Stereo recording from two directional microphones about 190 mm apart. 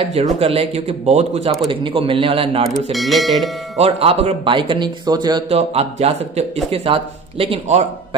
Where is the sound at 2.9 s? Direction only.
Centre (ahead or behind).